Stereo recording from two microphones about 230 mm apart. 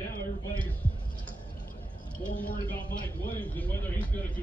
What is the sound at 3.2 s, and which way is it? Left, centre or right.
Speech, centre.